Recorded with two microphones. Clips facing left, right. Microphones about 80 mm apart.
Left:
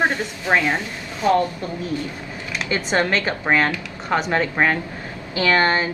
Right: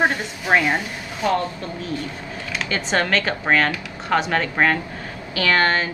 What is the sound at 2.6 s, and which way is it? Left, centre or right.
A woman's voice, centre.